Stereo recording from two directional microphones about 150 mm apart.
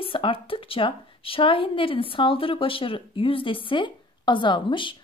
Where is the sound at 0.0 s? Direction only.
35° left (ahead or behind).